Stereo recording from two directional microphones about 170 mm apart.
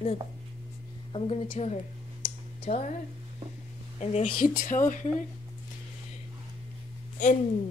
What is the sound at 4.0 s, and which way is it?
Speech, 40° left (ahead or behind).